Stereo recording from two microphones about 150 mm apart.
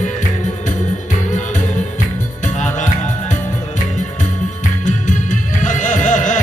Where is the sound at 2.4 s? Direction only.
55° left (ahead or behind).